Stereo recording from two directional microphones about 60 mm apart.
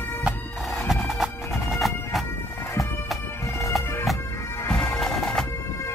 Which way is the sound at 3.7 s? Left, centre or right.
Centre.